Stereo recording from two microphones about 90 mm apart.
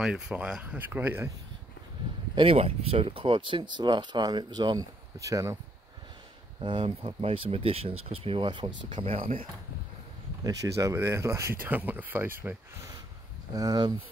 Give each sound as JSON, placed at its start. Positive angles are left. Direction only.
{"t": 0.0, "sound": "speech", "side_deg": -5}
{"t": 2.3, "sound": "speech", "side_deg": -90}
{"t": 6.6, "sound": "speech", "side_deg": -65}
{"t": 10.4, "sound": "speech", "side_deg": -40}
{"t": 11.6, "sound": "speech", "side_deg": -20}
{"t": 13.5, "sound": "speech", "side_deg": -45}